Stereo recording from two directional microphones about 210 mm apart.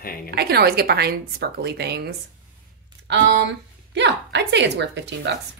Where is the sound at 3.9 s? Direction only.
55° right (ahead or behind).